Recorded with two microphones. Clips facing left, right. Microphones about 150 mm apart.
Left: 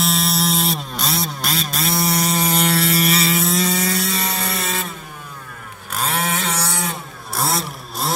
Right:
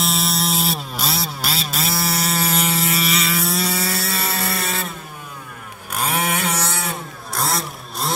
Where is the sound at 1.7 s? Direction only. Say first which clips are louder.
Left 4 dB; centre (ahead or behind).